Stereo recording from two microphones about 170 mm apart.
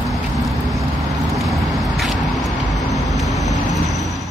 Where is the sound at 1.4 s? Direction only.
Centre (ahead or behind).